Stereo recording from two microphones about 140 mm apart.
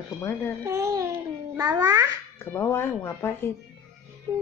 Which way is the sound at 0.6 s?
20° right (ahead or behind).